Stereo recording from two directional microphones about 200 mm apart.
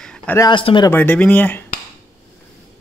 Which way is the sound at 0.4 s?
25° left (ahead or behind).